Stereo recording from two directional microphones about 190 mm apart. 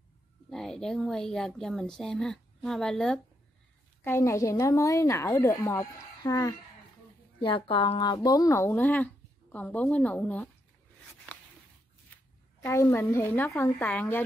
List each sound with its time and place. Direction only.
0.5 s speech: centre (ahead or behind)
11.3 s a sound: 10° left (ahead or behind)
12.6 s speech: 15° left (ahead or behind)